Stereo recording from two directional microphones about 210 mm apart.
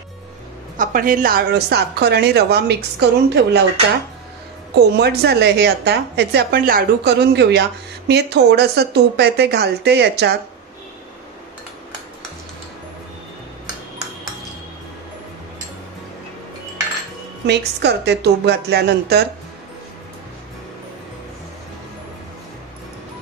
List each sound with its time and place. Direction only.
0.7 s speech: 40° right (ahead or behind)
4.7 s speech: 50° right (ahead or behind)
17.5 s speech: 50° right (ahead or behind)